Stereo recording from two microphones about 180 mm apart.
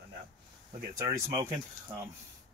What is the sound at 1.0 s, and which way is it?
Speech, 20° right (ahead or behind).